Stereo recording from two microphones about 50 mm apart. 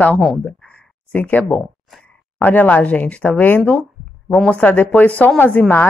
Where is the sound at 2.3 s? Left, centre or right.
Left.